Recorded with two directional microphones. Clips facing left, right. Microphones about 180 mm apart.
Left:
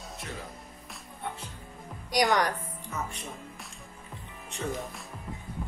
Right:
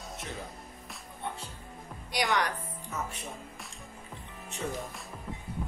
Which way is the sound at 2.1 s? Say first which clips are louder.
Left 4 dB; 40° left (ahead or behind).